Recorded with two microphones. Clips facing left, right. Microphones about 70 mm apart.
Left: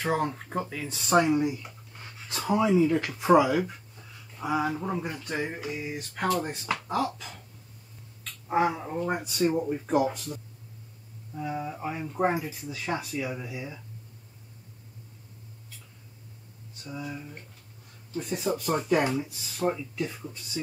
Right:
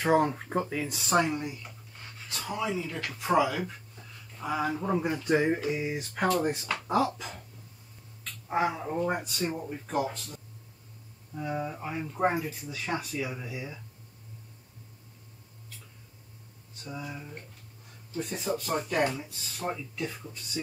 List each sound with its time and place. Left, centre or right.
0.0 s speech: centre
2.2 s speech: left; by 5.1 s centre
5.1 s a sound: centre
6.2 s speech: centre
6.9 s a sound: centre
8.5 s speech: centre
16.9 s speech: centre